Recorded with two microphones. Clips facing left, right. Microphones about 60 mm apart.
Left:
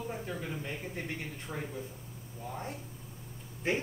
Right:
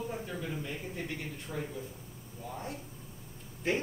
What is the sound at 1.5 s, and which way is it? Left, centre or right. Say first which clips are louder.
Speech: right 2 dB; left.